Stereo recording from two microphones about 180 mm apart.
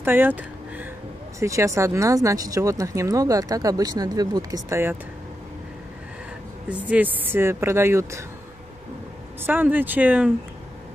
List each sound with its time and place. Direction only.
0.0 s a sound: 10° right (ahead or behind)
1.4 s speech: 15° right (ahead or behind)
6.7 s speech: 10° right (ahead or behind)
9.4 s speech: 10° right (ahead or behind)